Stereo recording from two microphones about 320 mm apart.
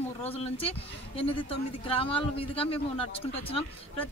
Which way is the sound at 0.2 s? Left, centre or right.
Centre.